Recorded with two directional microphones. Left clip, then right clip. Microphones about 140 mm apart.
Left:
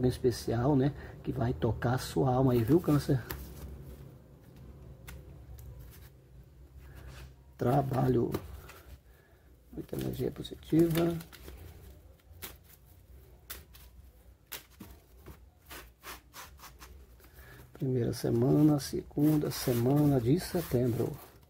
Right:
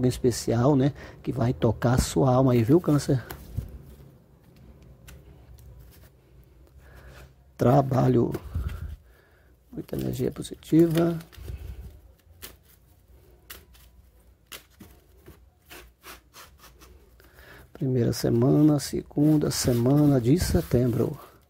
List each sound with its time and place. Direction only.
0.0 s speech: 35° right (ahead or behind)
7.5 s speech: 35° right (ahead or behind)
9.8 s speech: 35° right (ahead or behind)
17.7 s speech: 35° right (ahead or behind)